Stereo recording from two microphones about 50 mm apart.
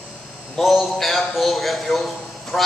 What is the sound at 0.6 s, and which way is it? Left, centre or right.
A man's voice, centre.